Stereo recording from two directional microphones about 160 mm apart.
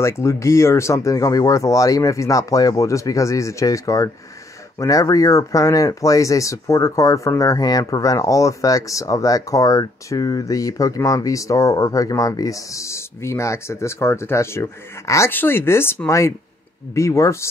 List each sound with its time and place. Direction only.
0.0 s speech: 15° left (ahead or behind)